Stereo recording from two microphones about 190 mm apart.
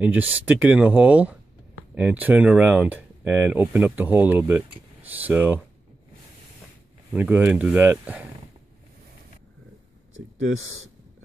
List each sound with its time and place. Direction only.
0.0 s speech: 10° right (ahead or behind)
7.1 s speech: 10° right (ahead or behind)
10.1 s speech: 90° right